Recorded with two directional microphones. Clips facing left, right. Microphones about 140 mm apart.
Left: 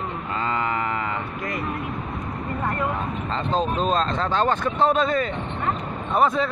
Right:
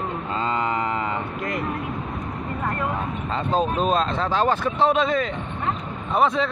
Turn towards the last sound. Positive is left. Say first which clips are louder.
# even
turn(degrees=0)  # may be behind; listen again after turning